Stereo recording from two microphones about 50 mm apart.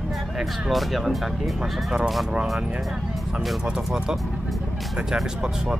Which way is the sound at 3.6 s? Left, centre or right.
Centre.